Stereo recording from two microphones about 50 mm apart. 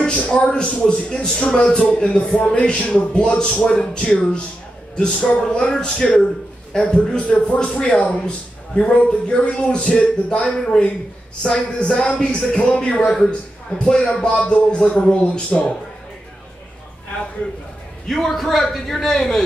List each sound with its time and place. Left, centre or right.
0.0 s a man's voice: centre
18.0 s a man's voice: centre